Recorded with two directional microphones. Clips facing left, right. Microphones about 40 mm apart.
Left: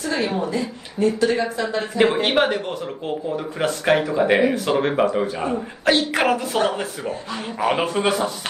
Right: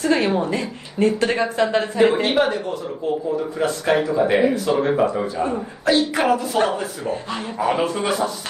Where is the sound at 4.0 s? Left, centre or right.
Left.